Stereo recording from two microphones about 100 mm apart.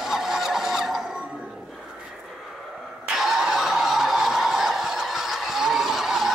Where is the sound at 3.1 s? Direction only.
5° right (ahead or behind).